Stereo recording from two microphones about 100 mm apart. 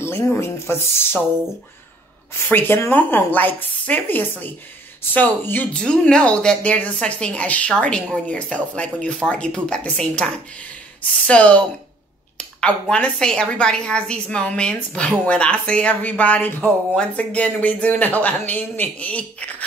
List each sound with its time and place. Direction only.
0.0 s speech: 25° left (ahead or behind)
2.5 s speech: 20° left (ahead or behind)
5.8 s speech: 10° left (ahead or behind)